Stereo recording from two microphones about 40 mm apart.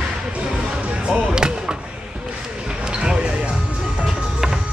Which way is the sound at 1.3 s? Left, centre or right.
Centre.